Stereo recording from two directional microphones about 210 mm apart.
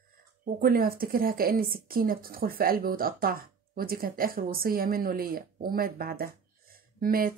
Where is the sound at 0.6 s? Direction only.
45° right (ahead or behind).